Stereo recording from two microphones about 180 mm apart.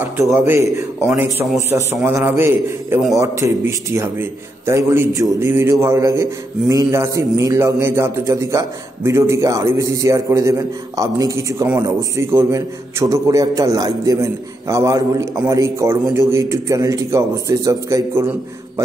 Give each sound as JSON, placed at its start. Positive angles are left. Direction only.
{"t": 0.0, "sound": "a man's voice", "side_deg": -10}